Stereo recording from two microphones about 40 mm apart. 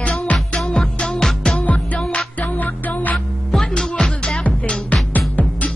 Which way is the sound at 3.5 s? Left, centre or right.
Centre.